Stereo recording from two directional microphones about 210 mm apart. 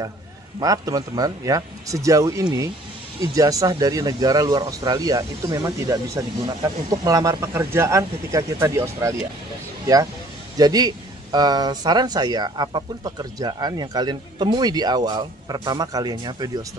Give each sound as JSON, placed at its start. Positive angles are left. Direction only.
{"t": 0.6, "sound": "speech", "side_deg": -15}
{"t": 10.6, "sound": "speech", "side_deg": -20}